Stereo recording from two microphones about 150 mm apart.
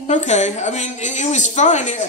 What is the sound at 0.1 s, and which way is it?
A woman's voice, 50° left (ahead or behind).